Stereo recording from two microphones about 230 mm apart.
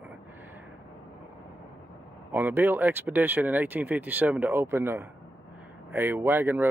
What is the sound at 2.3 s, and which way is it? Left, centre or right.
Speech, centre.